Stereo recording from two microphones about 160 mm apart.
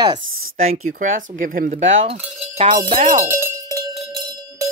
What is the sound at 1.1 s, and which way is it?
Speech, 60° right (ahead or behind).